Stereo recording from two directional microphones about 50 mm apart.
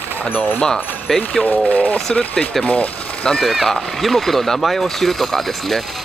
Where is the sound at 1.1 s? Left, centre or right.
Centre.